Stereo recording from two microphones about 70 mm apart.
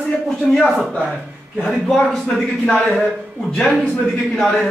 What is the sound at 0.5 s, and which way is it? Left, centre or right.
A man's voice, centre.